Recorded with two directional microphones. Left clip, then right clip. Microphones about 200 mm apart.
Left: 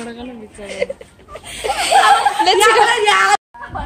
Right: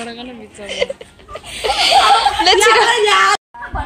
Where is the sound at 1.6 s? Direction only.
5° right (ahead or behind).